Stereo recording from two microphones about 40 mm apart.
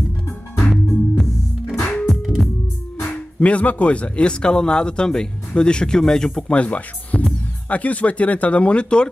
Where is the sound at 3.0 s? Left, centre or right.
Left; by 6.4 s centre.